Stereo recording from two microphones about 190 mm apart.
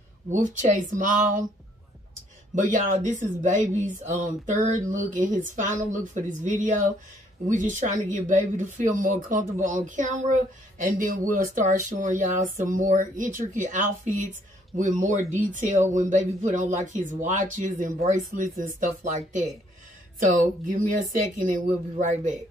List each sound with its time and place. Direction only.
0.3 s speech: 40° right (ahead or behind)
2.5 s speech: 40° right (ahead or behind)